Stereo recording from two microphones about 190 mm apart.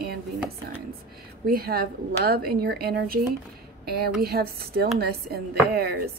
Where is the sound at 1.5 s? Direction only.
55° right (ahead or behind).